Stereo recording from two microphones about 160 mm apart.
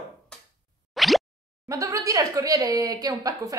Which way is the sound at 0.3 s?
5° left (ahead or behind).